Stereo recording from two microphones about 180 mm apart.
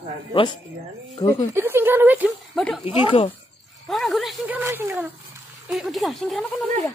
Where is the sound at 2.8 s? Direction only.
30° left (ahead or behind).